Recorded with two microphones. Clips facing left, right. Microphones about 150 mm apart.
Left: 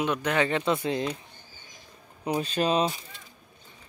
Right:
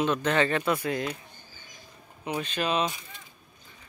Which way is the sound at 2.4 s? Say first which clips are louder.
Left 3 dB; 35° left (ahead or behind).